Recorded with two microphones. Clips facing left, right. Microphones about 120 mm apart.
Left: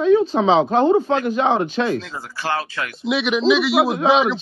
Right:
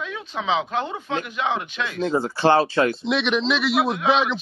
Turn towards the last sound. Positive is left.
turn(degrees=0)  # may be behind; listen again after turning